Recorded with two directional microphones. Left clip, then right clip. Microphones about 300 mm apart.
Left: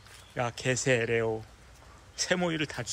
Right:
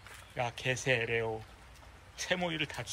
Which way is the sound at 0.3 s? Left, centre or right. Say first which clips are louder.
Left 4 dB; centre.